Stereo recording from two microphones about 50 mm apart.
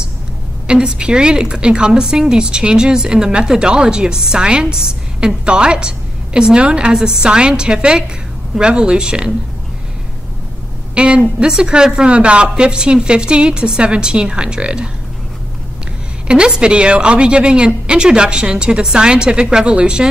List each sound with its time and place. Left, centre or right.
0.7 s a woman's voice: centre
11.0 s a woman's voice: right
16.3 s a woman's voice: centre